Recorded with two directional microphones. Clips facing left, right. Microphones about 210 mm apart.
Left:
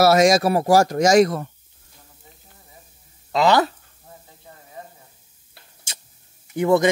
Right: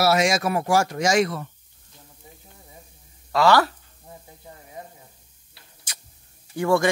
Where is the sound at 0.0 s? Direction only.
40° left (ahead or behind).